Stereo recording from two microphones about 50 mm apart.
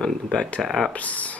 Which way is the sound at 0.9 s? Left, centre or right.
Left.